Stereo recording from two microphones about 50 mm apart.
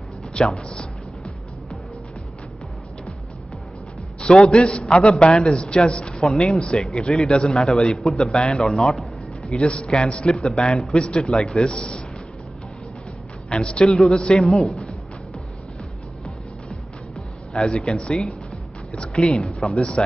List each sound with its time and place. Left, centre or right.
0.4 s a man's voice: centre
4.2 s a man's voice: centre
9.6 s a man's voice: left
13.5 s a man's voice: centre
13.8 s a man's voice: centre
17.5 s a man's voice: centre
19.3 s speech: centre